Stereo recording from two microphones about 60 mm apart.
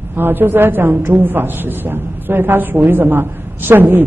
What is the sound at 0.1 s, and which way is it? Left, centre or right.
A woman's voice, right.